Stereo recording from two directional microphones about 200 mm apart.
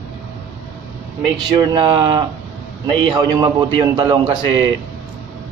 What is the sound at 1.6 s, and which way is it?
A man's voice, 20° right (ahead or behind).